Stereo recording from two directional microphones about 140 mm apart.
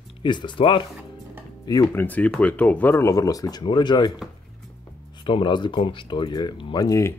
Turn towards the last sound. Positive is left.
turn(degrees=20)  # may be behind; listen again after turning